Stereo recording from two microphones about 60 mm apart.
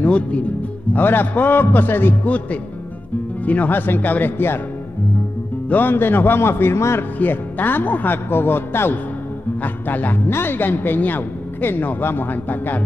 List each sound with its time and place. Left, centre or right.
0.0 s a man's voice: left
2.2 s a man's voice: left
5.7 s a man's voice: left
7.2 s a man's voice: left